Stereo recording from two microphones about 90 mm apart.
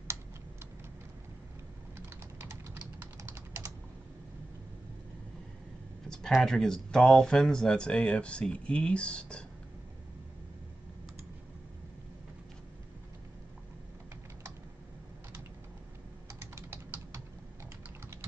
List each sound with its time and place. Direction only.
2.0 s typing: 25° right (ahead or behind)
6.0 s speech: 5° left (ahead or behind)
16.3 s typing: 30° right (ahead or behind)